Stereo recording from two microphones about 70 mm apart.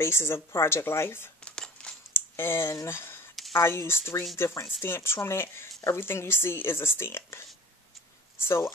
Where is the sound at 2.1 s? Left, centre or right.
Left.